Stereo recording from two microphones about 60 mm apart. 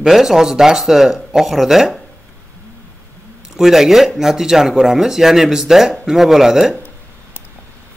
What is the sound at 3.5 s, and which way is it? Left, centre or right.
Speech, centre.